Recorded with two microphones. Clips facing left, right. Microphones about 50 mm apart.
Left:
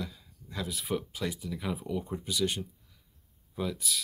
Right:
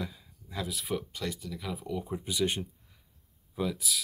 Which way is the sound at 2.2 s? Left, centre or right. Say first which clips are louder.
Right 3 dB; right.